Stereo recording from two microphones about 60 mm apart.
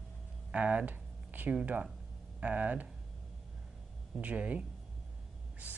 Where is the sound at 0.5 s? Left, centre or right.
Right.